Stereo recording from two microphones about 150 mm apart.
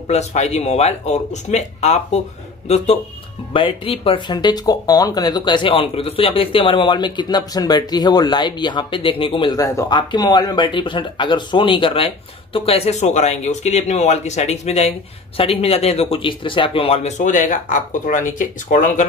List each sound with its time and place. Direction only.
0.1 s speech: 50° left (ahead or behind)
3.5 s speech: 35° left (ahead or behind)
17.2 s speech: 60° left (ahead or behind)